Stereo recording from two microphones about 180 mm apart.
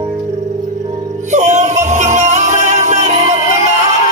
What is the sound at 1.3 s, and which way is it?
Music, 40° right (ahead or behind).